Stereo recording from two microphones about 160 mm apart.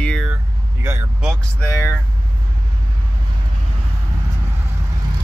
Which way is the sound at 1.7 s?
20° left (ahead or behind).